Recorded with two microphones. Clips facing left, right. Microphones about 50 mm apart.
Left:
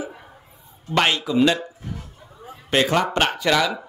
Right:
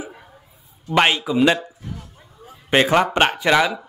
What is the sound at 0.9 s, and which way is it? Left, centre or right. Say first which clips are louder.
Speech: right 2 dB; centre.